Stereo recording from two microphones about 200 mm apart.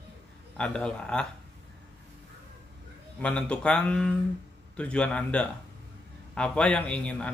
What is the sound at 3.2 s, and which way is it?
Speech, 5° left (ahead or behind).